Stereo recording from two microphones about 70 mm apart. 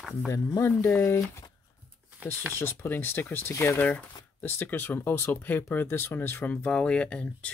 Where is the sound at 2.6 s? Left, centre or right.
Left.